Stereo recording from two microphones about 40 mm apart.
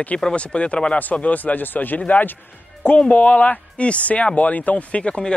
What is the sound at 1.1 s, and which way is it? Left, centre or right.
Speech, left.